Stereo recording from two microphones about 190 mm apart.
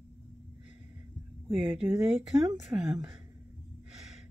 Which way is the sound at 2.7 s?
30° right (ahead or behind).